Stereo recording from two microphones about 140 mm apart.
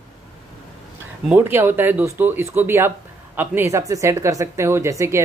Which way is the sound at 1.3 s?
15° right (ahead or behind).